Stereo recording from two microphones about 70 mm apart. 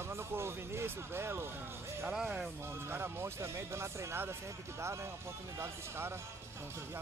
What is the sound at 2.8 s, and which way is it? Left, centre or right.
Speech, right.